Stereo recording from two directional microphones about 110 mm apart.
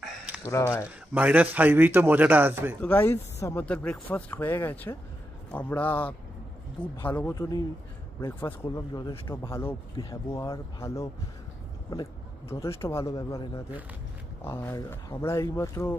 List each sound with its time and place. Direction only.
0.5 s speech: 25° left (ahead or behind)
1.1 s a man's voice: 15° right (ahead or behind)
2.8 s speech: 20° left (ahead or behind)
3.6 s speech: 10° left (ahead or behind)
7.3 s speech: 35° left (ahead or behind)
8.2 s speech: 20° left (ahead or behind)
8.6 s speech: 35° left (ahead or behind)
9.2 s speech: 25° left (ahead or behind)
10.8 s speech: 30° left (ahead or behind)
14.4 s speech: 25° left (ahead or behind)